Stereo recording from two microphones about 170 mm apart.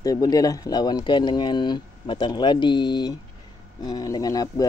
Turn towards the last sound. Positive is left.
turn(degrees=20)  # may be behind; listen again after turning